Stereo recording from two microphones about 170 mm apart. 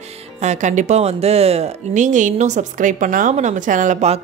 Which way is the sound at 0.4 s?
45° right (ahead or behind).